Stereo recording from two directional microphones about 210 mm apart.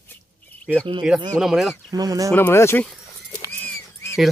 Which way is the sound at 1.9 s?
15° right (ahead or behind).